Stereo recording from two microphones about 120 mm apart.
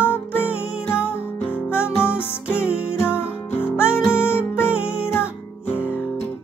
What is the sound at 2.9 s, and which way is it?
Music, 20° left (ahead or behind).